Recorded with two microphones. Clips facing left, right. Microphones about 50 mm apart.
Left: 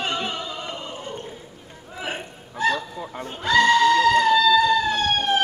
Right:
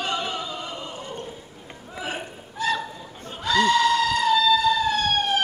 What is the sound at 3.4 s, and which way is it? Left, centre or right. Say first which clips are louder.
Emergency vehicle: left 3 dB; left.